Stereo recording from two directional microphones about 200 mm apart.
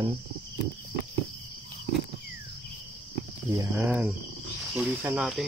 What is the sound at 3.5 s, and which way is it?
Speech, 15° right (ahead or behind).